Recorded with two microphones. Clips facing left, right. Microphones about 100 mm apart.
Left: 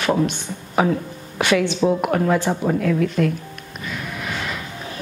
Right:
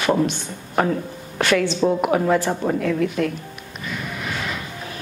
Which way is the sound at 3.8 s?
Centre (ahead or behind).